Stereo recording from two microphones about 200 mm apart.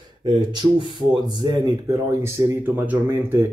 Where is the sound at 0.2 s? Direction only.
25° right (ahead or behind).